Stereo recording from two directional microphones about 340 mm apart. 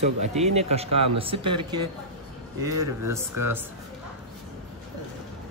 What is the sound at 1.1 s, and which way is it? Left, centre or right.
Speech, centre.